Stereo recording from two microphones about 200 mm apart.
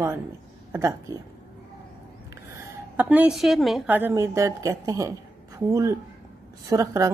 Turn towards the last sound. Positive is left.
turn(degrees=-15)  # may be behind; listen again after turning